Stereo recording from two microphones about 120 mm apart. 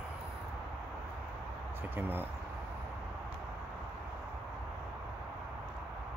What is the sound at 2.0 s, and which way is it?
Speech, 15° right (ahead or behind).